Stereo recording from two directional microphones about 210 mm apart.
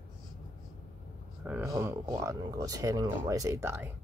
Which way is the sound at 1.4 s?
10° right (ahead or behind).